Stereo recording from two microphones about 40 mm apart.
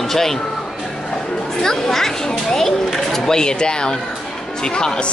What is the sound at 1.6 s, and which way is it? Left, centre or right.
Speech, centre.